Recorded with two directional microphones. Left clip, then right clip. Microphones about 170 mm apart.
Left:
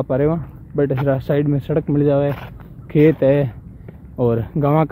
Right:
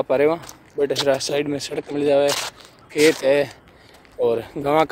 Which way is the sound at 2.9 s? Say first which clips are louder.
Left 2 dB; 10° right (ahead or behind).